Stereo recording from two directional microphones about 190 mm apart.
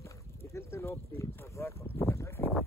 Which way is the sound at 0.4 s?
15° left (ahead or behind).